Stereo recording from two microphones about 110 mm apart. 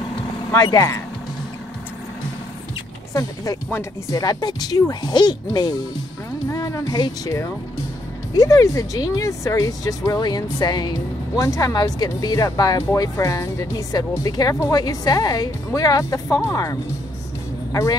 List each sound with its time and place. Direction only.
0.5 s speech: 35° left (ahead or behind)
3.1 s speech: 30° left (ahead or behind)